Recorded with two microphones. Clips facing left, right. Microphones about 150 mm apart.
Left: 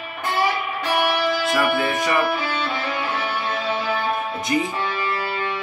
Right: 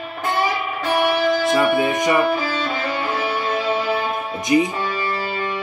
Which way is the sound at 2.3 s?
35° right (ahead or behind).